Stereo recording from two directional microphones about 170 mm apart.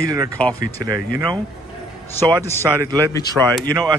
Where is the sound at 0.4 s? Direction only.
10° left (ahead or behind).